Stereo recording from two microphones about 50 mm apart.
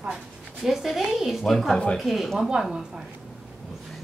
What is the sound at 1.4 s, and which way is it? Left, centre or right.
A woman's voice, centre.